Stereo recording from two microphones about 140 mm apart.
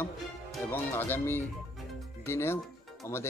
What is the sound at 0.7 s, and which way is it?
Speech, 15° left (ahead or behind).